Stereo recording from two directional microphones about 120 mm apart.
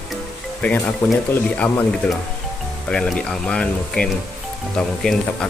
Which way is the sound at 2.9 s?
5° left (ahead or behind).